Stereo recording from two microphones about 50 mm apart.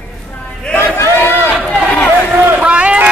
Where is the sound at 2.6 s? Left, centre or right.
Right.